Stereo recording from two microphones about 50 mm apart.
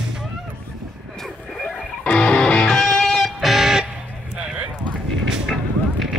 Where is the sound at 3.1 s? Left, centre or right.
Centre.